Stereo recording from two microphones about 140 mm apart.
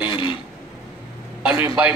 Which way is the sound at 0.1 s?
35° left (ahead or behind).